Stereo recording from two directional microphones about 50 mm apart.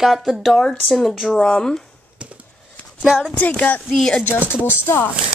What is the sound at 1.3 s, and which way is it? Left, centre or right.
Speech, centre.